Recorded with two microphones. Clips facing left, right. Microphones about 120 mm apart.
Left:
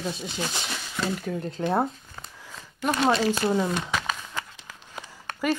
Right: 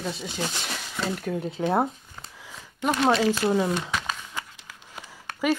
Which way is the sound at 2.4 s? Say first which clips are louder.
Right 1 dB; 10° right (ahead or behind).